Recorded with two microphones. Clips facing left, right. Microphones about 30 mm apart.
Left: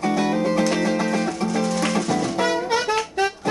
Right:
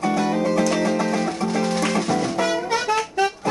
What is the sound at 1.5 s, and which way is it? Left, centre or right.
Music, right.